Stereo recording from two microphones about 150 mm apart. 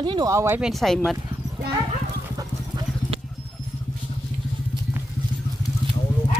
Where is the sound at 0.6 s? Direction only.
Centre (ahead or behind).